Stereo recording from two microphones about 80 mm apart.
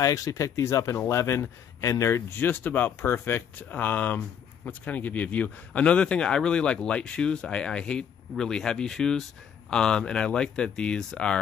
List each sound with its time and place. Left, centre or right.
0.0 s a man's voice: left; by 11.3 s centre